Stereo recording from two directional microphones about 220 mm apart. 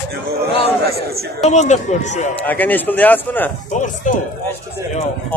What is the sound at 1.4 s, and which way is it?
Speech, 30° left (ahead or behind).